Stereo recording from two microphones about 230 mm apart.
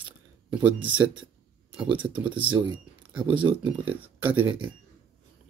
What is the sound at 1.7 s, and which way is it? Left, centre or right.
Speech, centre.